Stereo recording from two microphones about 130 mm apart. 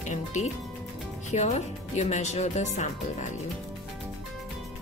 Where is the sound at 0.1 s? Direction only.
65° left (ahead or behind).